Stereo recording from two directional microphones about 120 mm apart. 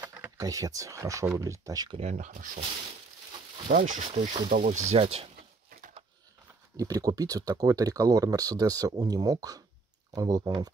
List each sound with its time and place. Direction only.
0.4 s speech: 30° right (ahead or behind)
2.0 s speech: 75° right (ahead or behind)
3.6 s speech: 90° right
4.9 s speech: 50° right (ahead or behind)
6.8 s speech: 30° right (ahead or behind)